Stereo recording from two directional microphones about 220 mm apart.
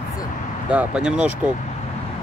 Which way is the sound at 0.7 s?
5° right (ahead or behind).